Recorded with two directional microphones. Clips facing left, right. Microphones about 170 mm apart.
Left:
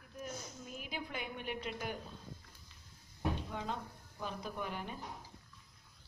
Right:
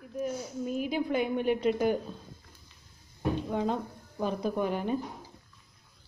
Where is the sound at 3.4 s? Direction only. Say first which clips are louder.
Right 11 dB; 45° right (ahead or behind).